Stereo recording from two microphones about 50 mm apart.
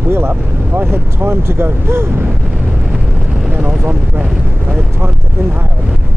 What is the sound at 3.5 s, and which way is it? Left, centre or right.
Vehicle, right.